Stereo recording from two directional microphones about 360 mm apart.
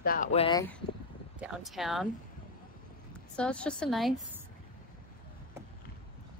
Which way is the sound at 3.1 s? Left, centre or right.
Centre.